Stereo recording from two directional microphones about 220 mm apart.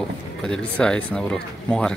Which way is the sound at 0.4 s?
5° left (ahead or behind).